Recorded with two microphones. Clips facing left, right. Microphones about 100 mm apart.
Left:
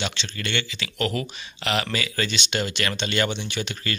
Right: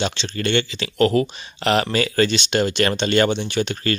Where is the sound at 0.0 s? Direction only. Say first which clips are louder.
Right 7 dB; 30° right (ahead or behind).